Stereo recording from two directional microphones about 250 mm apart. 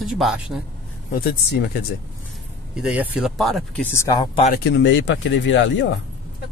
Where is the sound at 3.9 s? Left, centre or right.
Centre.